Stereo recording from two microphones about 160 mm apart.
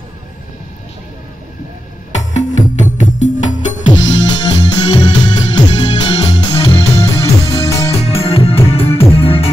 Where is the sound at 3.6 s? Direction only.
50° left (ahead or behind).